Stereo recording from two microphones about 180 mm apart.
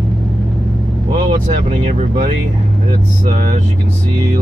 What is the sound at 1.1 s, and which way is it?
Vehicle, 30° right (ahead or behind).